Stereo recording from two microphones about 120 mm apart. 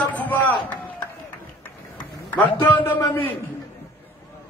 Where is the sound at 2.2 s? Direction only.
15° left (ahead or behind).